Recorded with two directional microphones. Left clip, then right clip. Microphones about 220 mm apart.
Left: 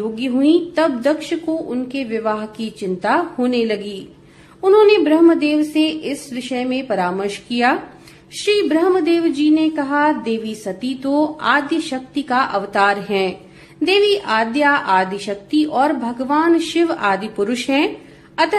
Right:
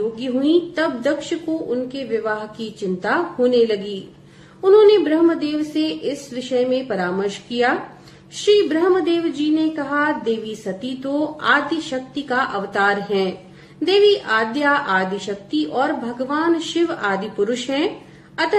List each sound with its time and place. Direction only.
0.2 s a woman's voice: 40° left (ahead or behind)